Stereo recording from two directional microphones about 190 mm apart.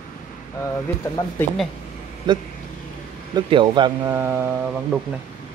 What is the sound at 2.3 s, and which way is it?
Speech, 25° right (ahead or behind).